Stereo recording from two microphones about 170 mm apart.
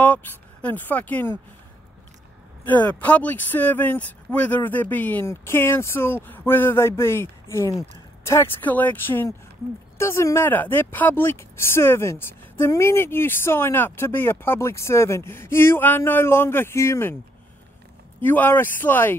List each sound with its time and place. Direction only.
0.0 s speech: 10° left (ahead or behind)
2.6 s speech: 10° left (ahead or behind)
18.2 s speech: 10° left (ahead or behind)